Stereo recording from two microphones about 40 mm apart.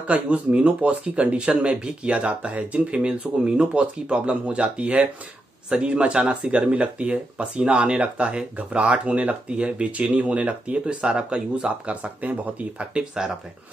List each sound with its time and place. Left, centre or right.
0.0 s speech: right
12.9 s speech: centre